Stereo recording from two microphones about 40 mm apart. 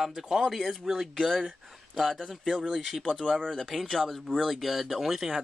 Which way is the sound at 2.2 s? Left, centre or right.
Centre.